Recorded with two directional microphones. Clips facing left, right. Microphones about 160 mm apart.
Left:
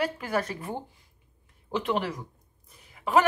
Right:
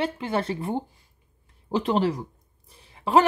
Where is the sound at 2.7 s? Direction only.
30° right (ahead or behind).